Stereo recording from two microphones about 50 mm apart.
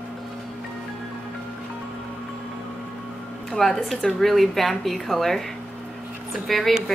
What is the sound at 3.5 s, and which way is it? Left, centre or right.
A woman's voice, centre.